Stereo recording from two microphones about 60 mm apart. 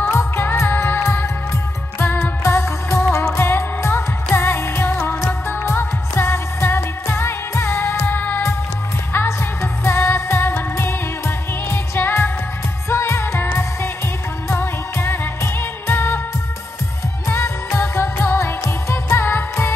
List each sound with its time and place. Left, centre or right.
0.1 s music: left
9.1 s music of asia: left
12.9 s music: left
17.3 s music: left